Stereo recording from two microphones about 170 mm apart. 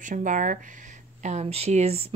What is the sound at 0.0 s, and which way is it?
Speech, 50° right (ahead or behind).